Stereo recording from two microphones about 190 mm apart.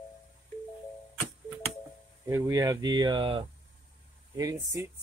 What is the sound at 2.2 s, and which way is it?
Speech, 15° right (ahead or behind).